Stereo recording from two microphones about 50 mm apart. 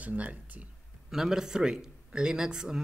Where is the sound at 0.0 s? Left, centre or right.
Right.